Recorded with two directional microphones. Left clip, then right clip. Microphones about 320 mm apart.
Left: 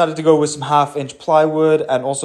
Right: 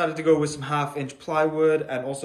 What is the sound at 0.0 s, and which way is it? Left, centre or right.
Speech, centre.